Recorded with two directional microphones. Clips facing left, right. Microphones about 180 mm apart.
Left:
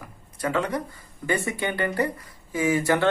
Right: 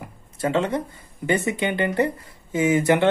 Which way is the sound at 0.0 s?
25° right (ahead or behind).